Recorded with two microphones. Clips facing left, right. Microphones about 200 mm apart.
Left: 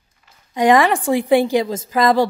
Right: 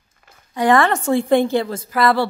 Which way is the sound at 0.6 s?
15° left (ahead or behind).